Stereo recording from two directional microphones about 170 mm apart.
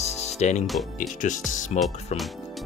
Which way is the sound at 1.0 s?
45° left (ahead or behind).